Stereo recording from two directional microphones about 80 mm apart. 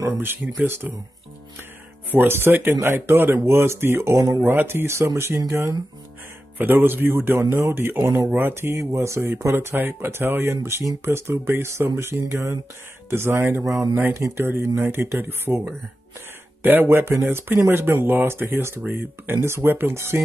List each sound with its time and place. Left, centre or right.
0.0 s speech: right
2.0 s speech: right
6.6 s speech: right
8.0 s speech: right
8.3 s speech: right